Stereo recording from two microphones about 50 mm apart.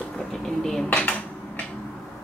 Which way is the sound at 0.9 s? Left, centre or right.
Left.